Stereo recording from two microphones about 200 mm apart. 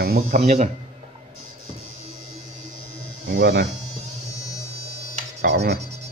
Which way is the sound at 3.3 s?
50° right (ahead or behind).